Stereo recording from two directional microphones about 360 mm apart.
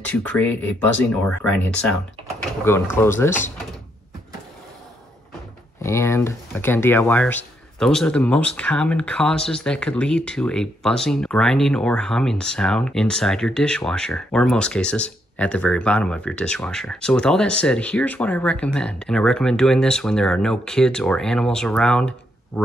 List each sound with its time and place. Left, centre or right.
0.0 s speech: centre
5.8 s speech: centre